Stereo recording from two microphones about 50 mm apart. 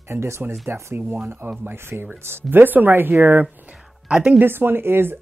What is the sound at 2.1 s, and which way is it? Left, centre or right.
Speech, right.